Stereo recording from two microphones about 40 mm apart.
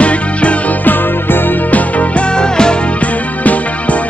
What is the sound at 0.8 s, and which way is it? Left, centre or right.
Music, left.